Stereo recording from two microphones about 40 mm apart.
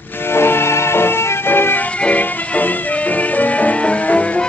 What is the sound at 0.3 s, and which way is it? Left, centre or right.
Music, left.